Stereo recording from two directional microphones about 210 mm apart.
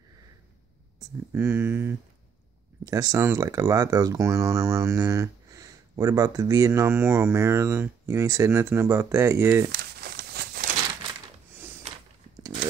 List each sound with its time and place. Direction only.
0.9 s speech: 10° right (ahead or behind)
9.7 s crumpling: 50° right (ahead or behind)